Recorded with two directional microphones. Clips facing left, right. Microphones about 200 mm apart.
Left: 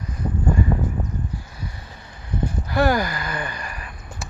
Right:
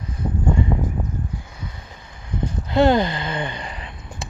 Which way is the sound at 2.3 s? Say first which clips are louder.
Right 3 dB; 25° right (ahead or behind).